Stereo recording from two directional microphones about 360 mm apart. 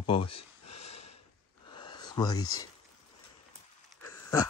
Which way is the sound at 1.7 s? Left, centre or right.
Centre.